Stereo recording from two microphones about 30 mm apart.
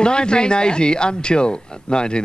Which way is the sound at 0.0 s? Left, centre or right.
Left.